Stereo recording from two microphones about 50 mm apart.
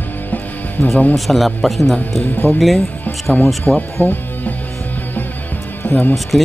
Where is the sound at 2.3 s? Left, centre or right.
Left.